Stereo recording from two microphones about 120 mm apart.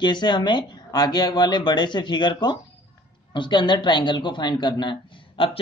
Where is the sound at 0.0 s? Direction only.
40° left (ahead or behind).